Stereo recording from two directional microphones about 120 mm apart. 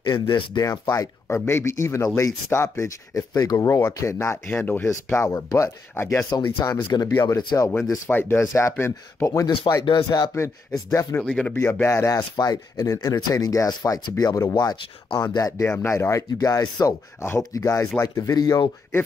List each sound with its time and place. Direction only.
0.0 s speech: 35° left (ahead or behind)
0.9 s speech: 20° left (ahead or behind)
7.3 s speech: 30° left (ahead or behind)
8.1 s speech: 20° left (ahead or behind)
11.2 s speech: 10° left (ahead or behind); by 18.7 s 35° left (ahead or behind)